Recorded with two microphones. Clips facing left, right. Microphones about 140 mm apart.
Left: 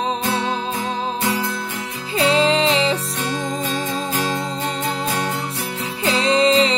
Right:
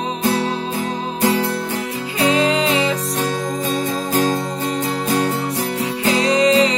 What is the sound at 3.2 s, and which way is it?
Music, 40° right (ahead or behind).